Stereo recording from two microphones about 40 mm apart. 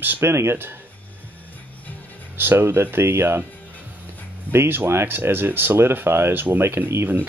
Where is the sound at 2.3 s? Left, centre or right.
Right.